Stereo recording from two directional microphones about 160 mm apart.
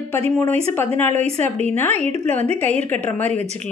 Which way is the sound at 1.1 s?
45° right (ahead or behind).